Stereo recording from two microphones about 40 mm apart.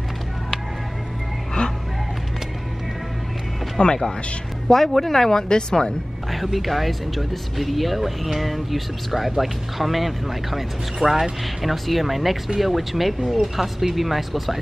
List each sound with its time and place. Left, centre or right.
3.8 s speech: centre
4.6 s speech: centre
6.3 s speech: centre